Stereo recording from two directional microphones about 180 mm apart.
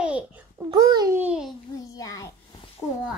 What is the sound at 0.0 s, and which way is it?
Babbling, 5° right (ahead or behind).